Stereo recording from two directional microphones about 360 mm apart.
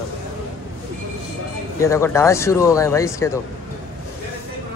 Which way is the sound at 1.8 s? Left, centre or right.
Centre.